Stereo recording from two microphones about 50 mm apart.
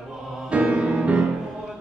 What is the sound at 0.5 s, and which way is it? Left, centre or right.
Music, right.